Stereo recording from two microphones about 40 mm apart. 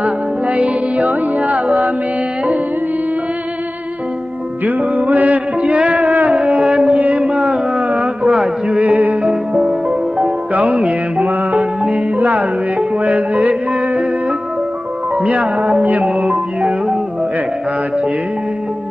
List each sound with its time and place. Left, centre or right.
0.0 s music: right
4.6 s music: right
6.6 s music: right
7.0 s a sound: right
7.7 s a sound: right
8.6 s music: right
9.5 s music: right
10.5 s music: right
15.2 s music: right
16.1 s music: centre